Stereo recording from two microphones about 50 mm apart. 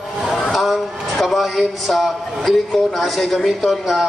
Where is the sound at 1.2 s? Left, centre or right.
Centre.